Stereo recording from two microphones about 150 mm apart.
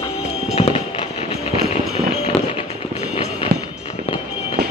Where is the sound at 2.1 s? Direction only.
40° left (ahead or behind).